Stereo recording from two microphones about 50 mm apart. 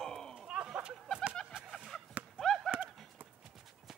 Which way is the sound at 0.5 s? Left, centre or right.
Centre.